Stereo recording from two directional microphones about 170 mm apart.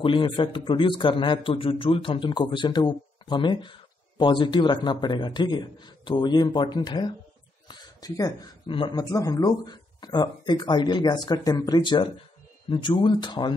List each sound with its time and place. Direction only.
0.0 s a man's voice: 30° left (ahead or behind)